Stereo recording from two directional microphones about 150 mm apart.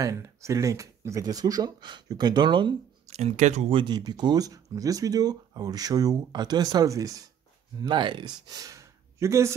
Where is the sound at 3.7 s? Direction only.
30° right (ahead or behind).